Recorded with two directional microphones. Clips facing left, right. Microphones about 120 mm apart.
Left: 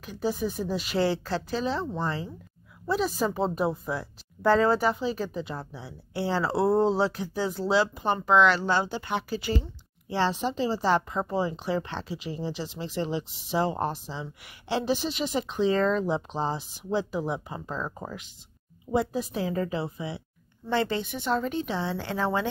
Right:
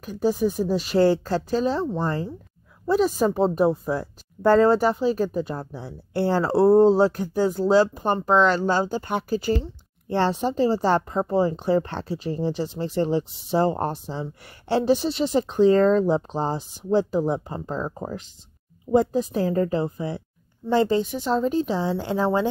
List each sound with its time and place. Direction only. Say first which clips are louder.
0.0 s a woman's voice: right 7 dB; 40° right (ahead or behind)
18.9 s a woman's voice: right 7 dB; 40° right (ahead or behind)
21.3 s a woman's voice: right 4 dB; 30° right (ahead or behind)
21.7 s a woman's voice: right 6 dB; 10° right (ahead or behind)